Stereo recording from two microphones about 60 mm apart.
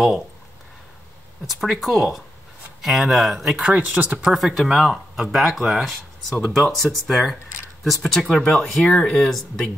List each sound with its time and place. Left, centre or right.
1.5 s speech: centre
3.5 s speech: centre
4.2 s speech: centre
8.9 s speech: centre
9.2 s speech: centre